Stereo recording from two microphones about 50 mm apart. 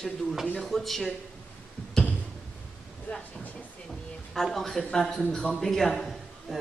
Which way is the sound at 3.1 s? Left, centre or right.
Left.